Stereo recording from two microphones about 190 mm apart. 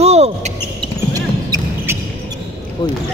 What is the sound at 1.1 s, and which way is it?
Basketball bounce, 20° right (ahead or behind).